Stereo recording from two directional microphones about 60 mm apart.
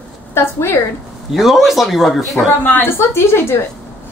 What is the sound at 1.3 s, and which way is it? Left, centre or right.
A woman's voice, centre.